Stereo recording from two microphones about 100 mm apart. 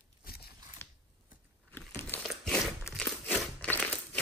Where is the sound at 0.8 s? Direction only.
25° left (ahead or behind).